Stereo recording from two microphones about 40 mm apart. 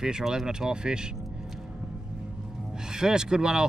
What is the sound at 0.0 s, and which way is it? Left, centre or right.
Speech, centre.